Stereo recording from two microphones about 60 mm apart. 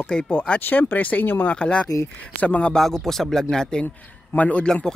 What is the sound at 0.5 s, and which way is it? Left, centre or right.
Speech, left.